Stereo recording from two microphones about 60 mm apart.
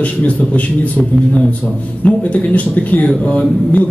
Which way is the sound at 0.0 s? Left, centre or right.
Left.